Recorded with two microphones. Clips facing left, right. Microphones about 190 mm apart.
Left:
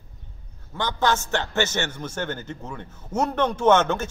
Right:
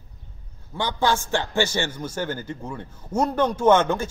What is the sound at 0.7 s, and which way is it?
A man's voice, 10° right (ahead or behind).